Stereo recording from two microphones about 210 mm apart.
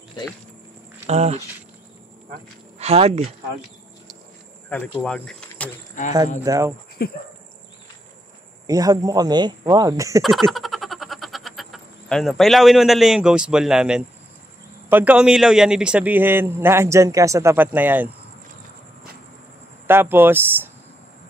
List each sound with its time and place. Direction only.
1.0 s speech: 30° right (ahead or behind)
2.8 s speech: 30° right (ahead or behind)
4.7 s speech: 10° left (ahead or behind)
6.0 s speech: 40° left (ahead or behind)
6.4 s a man's voice: 15° right (ahead or behind)
7.0 s speech: 50° left (ahead or behind)
8.6 s a man's voice: 15° right (ahead or behind)
10.2 s frog: centre (ahead or behind)
14.9 s a man's voice: 10° right (ahead or behind)
19.9 s a man's voice: 10° right (ahead or behind)